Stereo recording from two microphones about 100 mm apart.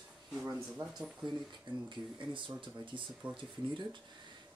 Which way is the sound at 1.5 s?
55° right (ahead or behind).